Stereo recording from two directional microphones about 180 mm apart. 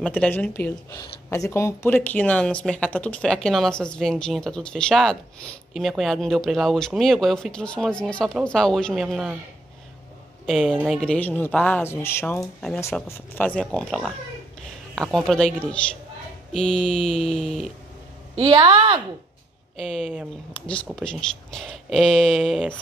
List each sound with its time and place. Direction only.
0.0 s speech: 5° left (ahead or behind)
10.4 s speech: centre (ahead or behind)
18.3 s a woman's voice: 30° right (ahead or behind)
19.8 s speech: 5° left (ahead or behind)